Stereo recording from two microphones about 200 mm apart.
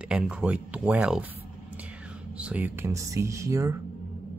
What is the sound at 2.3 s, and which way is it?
Speech, 5° right (ahead or behind).